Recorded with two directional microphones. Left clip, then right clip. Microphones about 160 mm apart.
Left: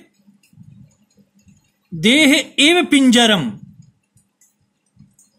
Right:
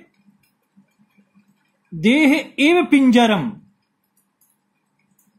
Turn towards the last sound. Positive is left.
turn(degrees=65)  # may be behind; listen again after turning